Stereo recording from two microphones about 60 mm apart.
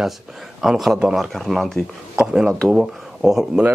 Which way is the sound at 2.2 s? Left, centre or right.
Centre.